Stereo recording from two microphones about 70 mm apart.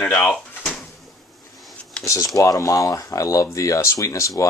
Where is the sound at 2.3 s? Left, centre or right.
Left.